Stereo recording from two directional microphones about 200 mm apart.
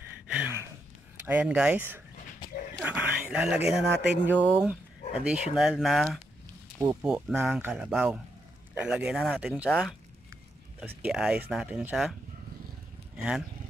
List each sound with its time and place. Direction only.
0.3 s gasp: 10° right (ahead or behind)
1.2 s speech: 10° right (ahead or behind)
6.8 s speech: 15° right (ahead or behind)
7.1 s speech: centre (ahead or behind)